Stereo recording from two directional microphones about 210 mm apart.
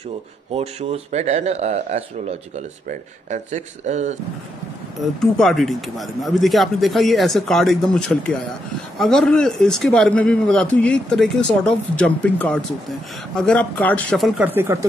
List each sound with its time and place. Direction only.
0.5 s speech: 30° right (ahead or behind)
5.2 s a man's voice: centre (ahead or behind)